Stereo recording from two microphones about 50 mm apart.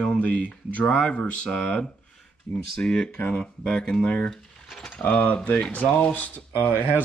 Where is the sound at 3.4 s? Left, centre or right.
Centre.